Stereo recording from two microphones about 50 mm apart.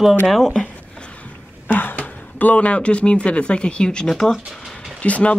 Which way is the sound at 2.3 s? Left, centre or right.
Left.